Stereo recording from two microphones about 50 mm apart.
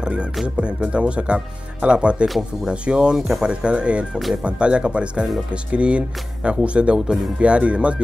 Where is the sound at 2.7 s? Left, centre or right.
Centre.